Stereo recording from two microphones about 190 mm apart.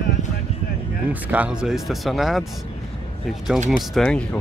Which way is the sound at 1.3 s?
5° right (ahead or behind).